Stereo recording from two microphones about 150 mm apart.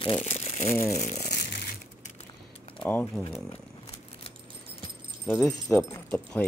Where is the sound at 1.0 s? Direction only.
55° left (ahead or behind).